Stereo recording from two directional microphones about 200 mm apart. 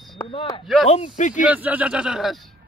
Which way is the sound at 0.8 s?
35° left (ahead or behind).